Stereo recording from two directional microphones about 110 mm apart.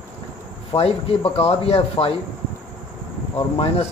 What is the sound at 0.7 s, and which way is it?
Speech, 60° left (ahead or behind).